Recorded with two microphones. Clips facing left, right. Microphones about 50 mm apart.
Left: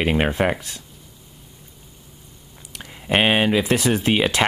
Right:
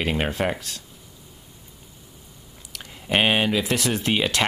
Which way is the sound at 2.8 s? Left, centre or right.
Centre.